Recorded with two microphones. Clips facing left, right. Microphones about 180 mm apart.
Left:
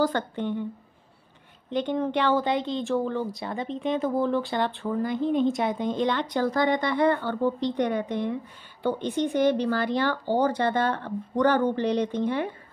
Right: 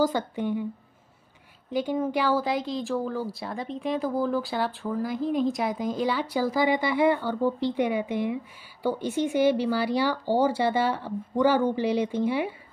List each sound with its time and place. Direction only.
0.0 s speech: 10° right (ahead or behind)
1.7 s speech: 5° right (ahead or behind)